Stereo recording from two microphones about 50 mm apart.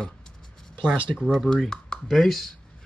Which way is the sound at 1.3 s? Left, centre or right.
Centre.